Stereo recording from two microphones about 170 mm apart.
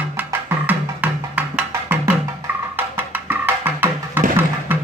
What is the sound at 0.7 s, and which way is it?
Music, 10° right (ahead or behind).